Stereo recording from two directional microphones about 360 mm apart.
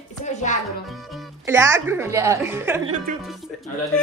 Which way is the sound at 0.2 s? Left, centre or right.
Centre.